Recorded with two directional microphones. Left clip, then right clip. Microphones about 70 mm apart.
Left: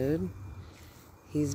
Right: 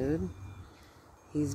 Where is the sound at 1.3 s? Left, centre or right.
Centre.